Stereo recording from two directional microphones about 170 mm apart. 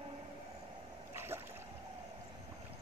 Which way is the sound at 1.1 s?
15° right (ahead or behind).